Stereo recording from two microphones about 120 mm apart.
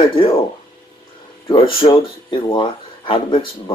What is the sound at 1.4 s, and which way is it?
Speech, 45° left (ahead or behind).